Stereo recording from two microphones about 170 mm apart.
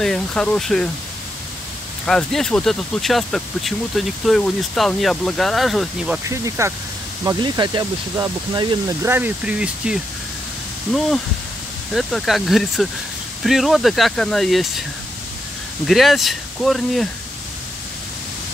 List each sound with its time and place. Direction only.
0.0 s speech: 5° left (ahead or behind)
2.0 s speech: 5° left (ahead or behind)
6.2 s speech: 15° right (ahead or behind)
11.9 s speech: centre (ahead or behind)
15.9 s speech: centre (ahead or behind)